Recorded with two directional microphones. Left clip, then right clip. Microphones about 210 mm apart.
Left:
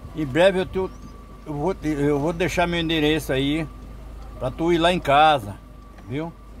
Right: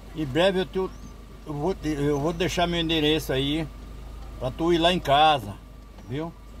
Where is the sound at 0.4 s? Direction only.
15° left (ahead or behind).